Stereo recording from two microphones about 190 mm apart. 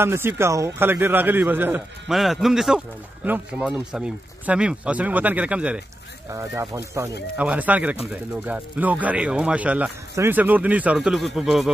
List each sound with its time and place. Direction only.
0.0 s speech: 10° right (ahead or behind)